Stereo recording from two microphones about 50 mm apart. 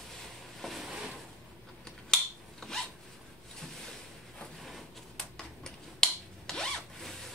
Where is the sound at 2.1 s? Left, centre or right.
Centre.